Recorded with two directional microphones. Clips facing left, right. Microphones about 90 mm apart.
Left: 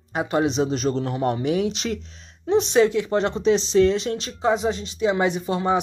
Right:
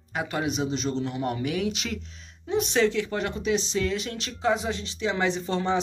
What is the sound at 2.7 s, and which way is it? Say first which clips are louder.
Speech: left 4 dB; 20° left (ahead or behind).